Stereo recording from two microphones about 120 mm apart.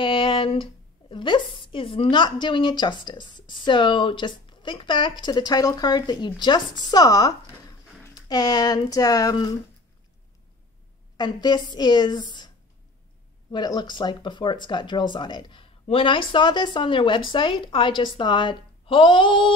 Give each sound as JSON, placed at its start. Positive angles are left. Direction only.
{"t": 0.0, "sound": "a woman's voice", "side_deg": 45}
{"t": 11.1, "sound": "a woman's voice", "side_deg": 35}
{"t": 13.5, "sound": "a woman's voice", "side_deg": 35}